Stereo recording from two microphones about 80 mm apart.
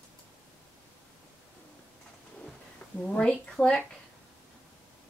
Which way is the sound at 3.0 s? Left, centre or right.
Centre.